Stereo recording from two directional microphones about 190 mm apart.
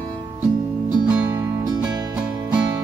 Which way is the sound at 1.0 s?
5° right (ahead or behind).